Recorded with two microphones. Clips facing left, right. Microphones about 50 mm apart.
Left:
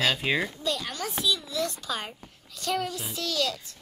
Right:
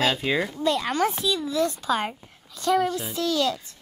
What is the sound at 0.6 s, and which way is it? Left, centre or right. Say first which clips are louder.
Speech: right 7 dB; right.